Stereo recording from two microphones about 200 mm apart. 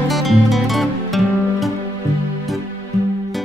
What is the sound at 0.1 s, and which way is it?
Music, centre (ahead or behind).